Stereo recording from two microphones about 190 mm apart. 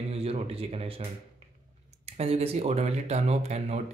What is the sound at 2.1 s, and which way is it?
Speech, 35° right (ahead or behind).